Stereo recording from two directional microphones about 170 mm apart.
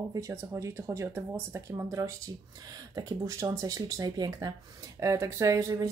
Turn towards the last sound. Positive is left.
turn(degrees=-20)  # may be behind; listen again after turning